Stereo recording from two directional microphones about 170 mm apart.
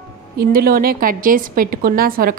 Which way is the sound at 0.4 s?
60° right (ahead or behind).